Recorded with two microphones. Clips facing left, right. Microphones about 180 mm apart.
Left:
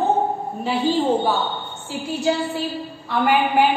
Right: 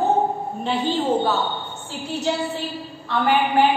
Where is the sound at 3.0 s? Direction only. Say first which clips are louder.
Left 1 dB; 10° left (ahead or behind).